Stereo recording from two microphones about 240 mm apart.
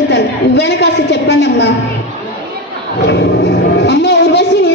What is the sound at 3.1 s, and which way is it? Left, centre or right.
Music, left.